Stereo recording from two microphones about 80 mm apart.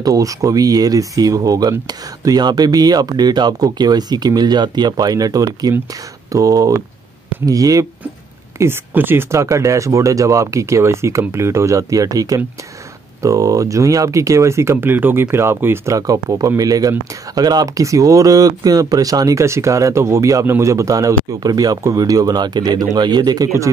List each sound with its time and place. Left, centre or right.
0.0 s speech: right
8.5 s speech: right
15.9 s speech: right
17.8 s speech: right